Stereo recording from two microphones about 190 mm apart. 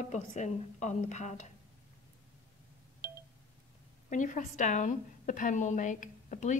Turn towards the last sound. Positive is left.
turn(degrees=40)  # may be behind; listen again after turning